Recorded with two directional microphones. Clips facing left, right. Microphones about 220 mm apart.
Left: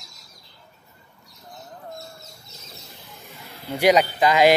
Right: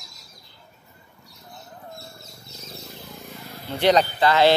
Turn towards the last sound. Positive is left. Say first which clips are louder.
# left 1 dB
turn(degrees=10)  # may be behind; listen again after turning